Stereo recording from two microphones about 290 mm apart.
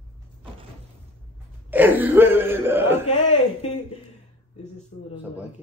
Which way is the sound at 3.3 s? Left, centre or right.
Left.